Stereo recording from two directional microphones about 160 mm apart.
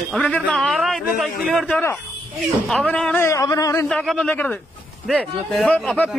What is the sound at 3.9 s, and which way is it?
A man's voice, 5° left (ahead or behind).